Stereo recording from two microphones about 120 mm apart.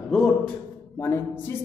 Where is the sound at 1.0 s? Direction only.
20° left (ahead or behind).